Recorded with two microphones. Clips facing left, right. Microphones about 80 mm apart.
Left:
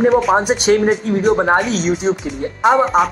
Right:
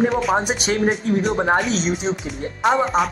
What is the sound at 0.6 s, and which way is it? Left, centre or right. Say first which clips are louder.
Speech: left 7 dB; left.